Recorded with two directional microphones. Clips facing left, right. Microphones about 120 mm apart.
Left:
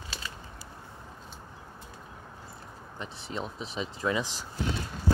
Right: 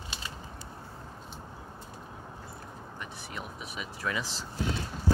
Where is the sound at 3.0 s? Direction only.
25° left (ahead or behind).